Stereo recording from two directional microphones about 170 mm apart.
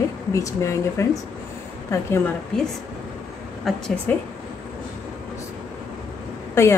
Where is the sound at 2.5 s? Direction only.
5° left (ahead or behind).